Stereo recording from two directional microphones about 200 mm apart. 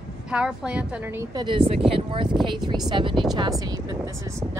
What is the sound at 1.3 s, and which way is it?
Speech, 25° right (ahead or behind).